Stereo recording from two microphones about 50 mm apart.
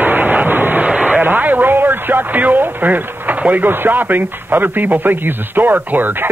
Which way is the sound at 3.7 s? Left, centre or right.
Right.